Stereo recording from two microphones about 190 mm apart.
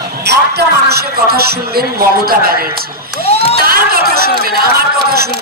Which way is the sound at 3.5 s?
50° right (ahead or behind).